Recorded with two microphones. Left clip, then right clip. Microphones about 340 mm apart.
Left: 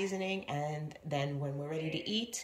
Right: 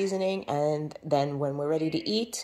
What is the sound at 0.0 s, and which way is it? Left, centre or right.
Speech, centre.